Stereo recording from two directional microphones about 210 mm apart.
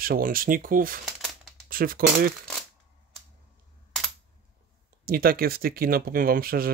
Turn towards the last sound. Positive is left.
turn(degrees=-45)  # may be behind; listen again after turning